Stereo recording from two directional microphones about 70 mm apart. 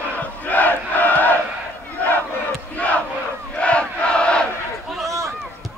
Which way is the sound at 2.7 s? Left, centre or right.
Left.